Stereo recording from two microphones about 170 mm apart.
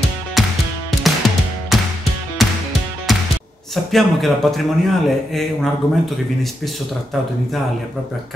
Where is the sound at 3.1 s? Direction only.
Centre (ahead or behind).